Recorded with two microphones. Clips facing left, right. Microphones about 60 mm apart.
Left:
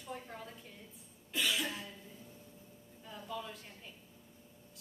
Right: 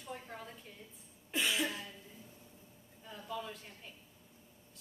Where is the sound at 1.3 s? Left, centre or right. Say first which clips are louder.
Right 1 dB; right.